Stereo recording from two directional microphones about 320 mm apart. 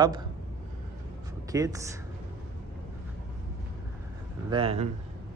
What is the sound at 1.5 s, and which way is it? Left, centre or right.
Speech, centre.